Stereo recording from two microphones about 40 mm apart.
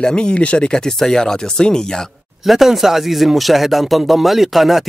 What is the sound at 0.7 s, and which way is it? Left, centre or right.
Speech, centre.